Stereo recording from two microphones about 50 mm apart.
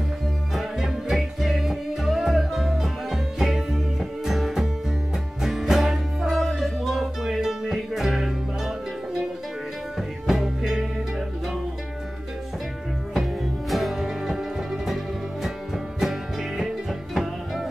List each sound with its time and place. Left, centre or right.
0.6 s music: centre
13.1 s music: centre